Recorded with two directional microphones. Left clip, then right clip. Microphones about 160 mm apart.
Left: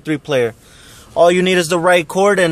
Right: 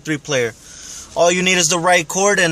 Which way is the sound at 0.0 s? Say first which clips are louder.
Left 3 dB; 20° left (ahead or behind).